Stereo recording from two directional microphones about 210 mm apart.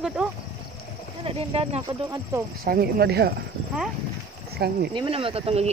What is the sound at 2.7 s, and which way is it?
Speech, 45° right (ahead or behind).